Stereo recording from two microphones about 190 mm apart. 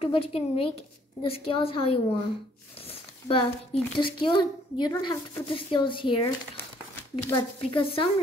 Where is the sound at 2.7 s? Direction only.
30° left (ahead or behind).